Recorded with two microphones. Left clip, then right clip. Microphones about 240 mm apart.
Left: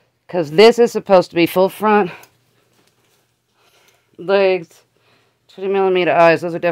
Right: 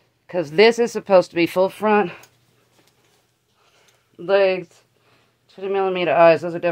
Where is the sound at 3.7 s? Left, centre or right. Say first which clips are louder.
Left 3 dB; left.